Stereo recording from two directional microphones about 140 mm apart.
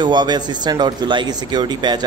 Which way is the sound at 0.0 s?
30° right (ahead or behind).